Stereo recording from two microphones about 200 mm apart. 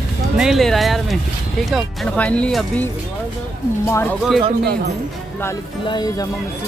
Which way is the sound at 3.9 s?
10° left (ahead or behind).